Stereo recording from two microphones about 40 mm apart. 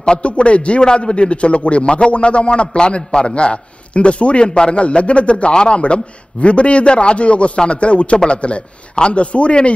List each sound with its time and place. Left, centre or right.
0.0 s a man's voice: left